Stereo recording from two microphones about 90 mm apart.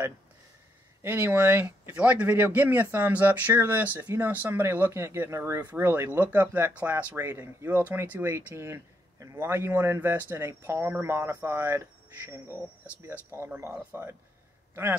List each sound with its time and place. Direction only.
1.0 s speech: 20° right (ahead or behind)
13.6 s speech: 25° right (ahead or behind)